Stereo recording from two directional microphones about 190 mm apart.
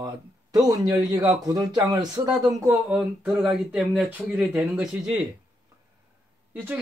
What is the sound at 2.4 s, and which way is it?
Speech, centre (ahead or behind).